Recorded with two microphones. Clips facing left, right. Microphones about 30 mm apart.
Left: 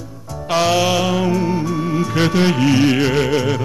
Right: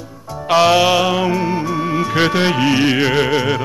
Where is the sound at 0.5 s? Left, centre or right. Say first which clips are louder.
Right 4 dB; centre.